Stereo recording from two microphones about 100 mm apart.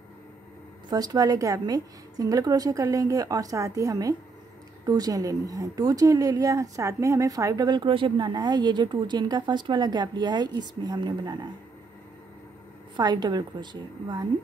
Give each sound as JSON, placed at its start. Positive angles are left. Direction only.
{"t": 0.8, "sound": "a woman's voice", "side_deg": -40}
{"t": 12.9, "sound": "speech", "side_deg": -45}